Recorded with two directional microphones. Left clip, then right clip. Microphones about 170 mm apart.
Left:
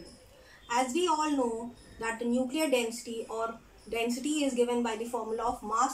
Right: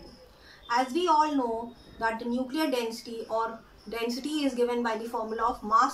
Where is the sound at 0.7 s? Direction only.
Centre (ahead or behind).